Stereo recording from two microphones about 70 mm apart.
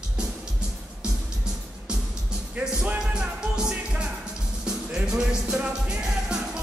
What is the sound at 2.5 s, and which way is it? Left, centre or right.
Music, right.